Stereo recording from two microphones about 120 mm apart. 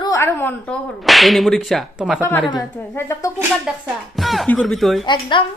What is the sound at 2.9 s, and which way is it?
Speech, 25° left (ahead or behind).